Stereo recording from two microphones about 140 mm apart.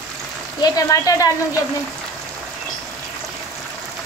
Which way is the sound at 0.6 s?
25° left (ahead or behind).